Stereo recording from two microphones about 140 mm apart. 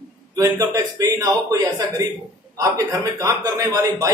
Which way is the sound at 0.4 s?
25° right (ahead or behind).